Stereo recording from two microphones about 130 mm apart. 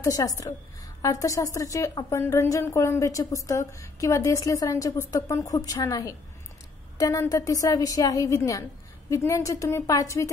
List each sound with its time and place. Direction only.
0.0 s a woman's voice: 25° left (ahead or behind)